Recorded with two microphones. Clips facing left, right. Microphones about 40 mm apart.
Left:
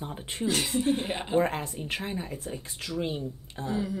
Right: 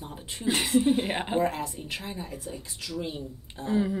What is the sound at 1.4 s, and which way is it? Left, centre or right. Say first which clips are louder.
A woman's voice: left 1 dB; left.